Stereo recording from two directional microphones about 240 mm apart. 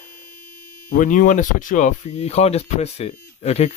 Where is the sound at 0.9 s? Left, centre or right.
Left.